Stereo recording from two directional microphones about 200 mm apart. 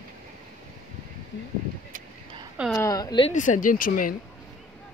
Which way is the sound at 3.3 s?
40° left (ahead or behind).